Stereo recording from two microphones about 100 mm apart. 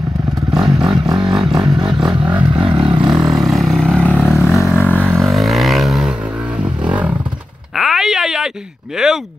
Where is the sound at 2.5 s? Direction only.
50° right (ahead or behind).